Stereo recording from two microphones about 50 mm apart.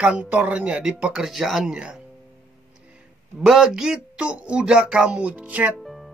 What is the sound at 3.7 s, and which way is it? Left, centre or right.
Speech, centre.